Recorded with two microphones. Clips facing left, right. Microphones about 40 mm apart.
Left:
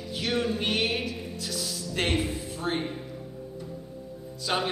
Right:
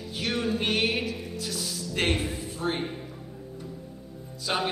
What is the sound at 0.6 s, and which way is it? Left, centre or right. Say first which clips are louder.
Music: right 1 dB; centre.